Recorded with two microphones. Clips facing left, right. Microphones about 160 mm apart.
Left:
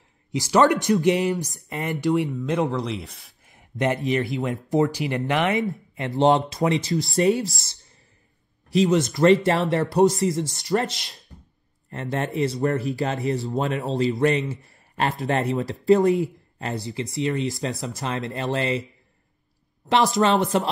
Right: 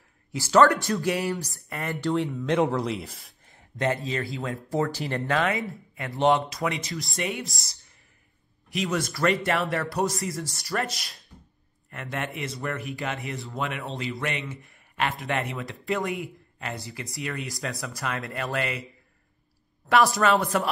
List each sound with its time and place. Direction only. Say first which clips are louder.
0.3 s speech: left 1 dB; 15° left (ahead or behind)
2.3 s speech: even; centre (ahead or behind)
3.4 s speech: left 3 dB; 20° left (ahead or behind)
8.7 s speech: left 9 dB; 25° left (ahead or behind)
16.9 s speech: left 9 dB; 25° left (ahead or behind)
19.9 s speech: left 2 dB; 20° left (ahead or behind)